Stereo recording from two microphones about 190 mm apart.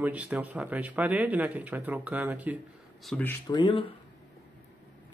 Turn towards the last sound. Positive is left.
turn(degrees=25)  # may be behind; listen again after turning